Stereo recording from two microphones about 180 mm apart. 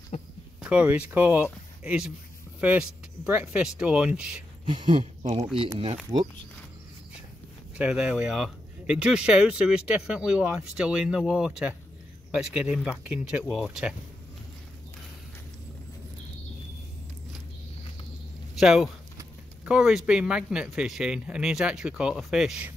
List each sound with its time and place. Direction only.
0.1 s a sound: 40° left (ahead or behind)
0.6 s speech: 5° right (ahead or behind)
4.6 s speech: 25° right (ahead or behind)
7.7 s speech: 5° right (ahead or behind)
18.6 s speech: 5° right (ahead or behind)